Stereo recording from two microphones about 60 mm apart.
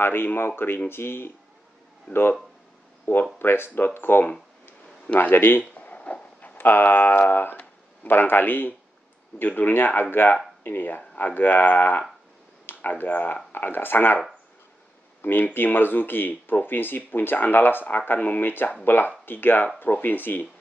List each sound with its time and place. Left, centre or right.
0.0 s speech: left
3.3 s speech: left
5.9 s a sound: left
6.6 s speech: left
15.2 s speech: left